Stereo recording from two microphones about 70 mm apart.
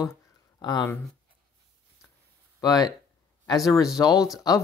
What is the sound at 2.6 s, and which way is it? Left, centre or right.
Speech, left.